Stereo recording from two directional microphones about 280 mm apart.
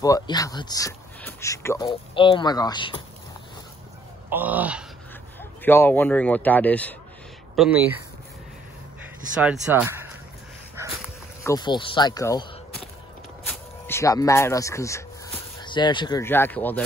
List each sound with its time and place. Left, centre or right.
0.0 s speech: centre
4.3 s speech: centre
5.4 s speech: centre
9.4 s speech: centre
11.4 s speech: centre
13.5 s speech: centre